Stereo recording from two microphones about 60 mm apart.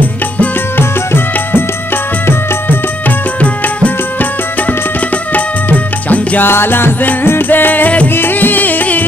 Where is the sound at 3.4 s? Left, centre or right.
Left.